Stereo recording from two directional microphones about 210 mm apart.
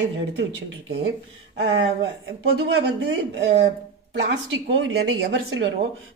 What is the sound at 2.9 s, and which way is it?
Speech, 55° right (ahead or behind).